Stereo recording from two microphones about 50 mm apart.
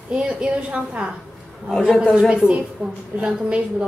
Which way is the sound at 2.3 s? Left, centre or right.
Right.